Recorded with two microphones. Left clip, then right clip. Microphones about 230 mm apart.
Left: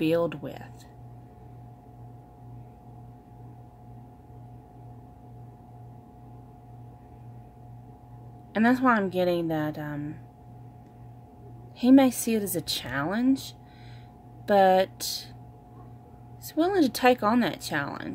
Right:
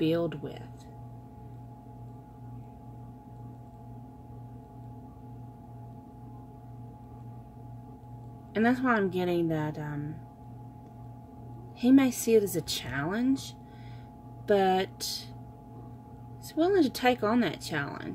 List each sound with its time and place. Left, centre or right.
0.3 s speech: left
8.5 s speech: left
11.8 s speech: left
16.4 s speech: left